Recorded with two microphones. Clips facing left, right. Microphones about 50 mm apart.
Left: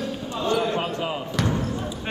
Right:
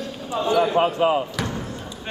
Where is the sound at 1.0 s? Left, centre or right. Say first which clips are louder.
Right 9 dB; right.